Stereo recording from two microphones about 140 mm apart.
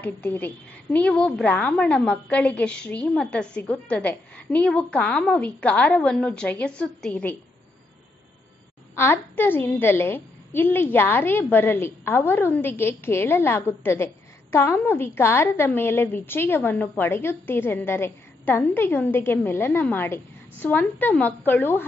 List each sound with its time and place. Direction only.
0.0 s a woman's voice: 10° left (ahead or behind)
8.9 s a woman's voice: 15° left (ahead or behind)